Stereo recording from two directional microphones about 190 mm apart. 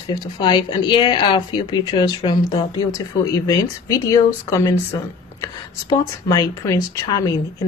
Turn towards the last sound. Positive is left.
turn(degrees=20)  # may be behind; listen again after turning